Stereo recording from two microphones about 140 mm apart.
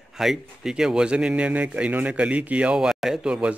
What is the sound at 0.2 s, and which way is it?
A man's voice, 5° right (ahead or behind).